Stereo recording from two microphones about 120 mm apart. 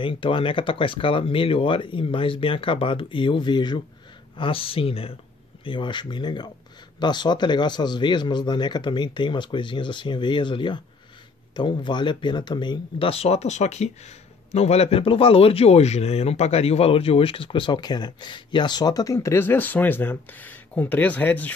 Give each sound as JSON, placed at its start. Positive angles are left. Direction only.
{"t": 0.0, "sound": "speech", "side_deg": 45}
{"t": 13.1, "sound": "speech", "side_deg": 60}